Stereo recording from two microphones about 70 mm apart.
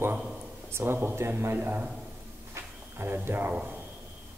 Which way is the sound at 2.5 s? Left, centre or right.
Right.